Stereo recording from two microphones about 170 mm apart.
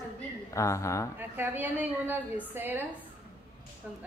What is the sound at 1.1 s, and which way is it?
A woman's voice, 10° right (ahead or behind).